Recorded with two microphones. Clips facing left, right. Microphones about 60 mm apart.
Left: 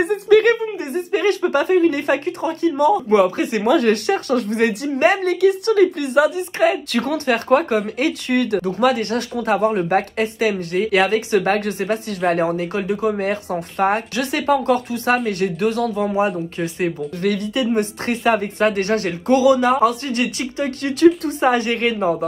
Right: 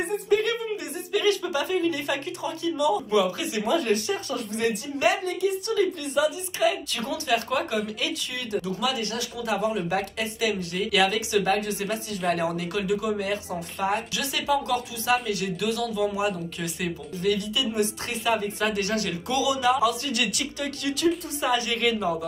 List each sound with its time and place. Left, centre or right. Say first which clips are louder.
0.0 s a woman's voice: left 10 dB; left
0.5 s speech: left 10 dB; left
5.2 s a woman's voice: left 10 dB; left
5.8 s speech: left 6 dB; left
12.4 s speech: left 7 dB; left